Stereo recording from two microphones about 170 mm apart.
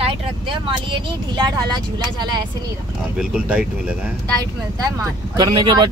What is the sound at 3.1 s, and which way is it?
Speech, 5° right (ahead or behind).